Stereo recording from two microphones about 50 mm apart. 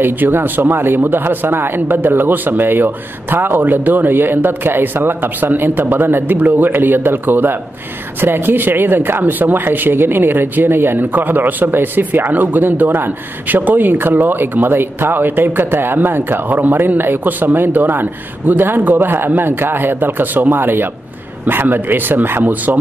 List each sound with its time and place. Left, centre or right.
0.0 s a man's voice: right